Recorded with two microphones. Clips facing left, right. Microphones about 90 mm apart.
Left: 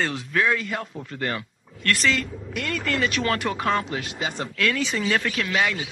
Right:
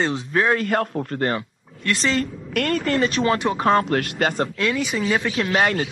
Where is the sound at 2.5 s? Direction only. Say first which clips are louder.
Right 7 dB; 55° right (ahead or behind).